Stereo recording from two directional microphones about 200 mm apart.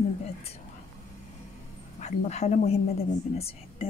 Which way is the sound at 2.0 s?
35° left (ahead or behind).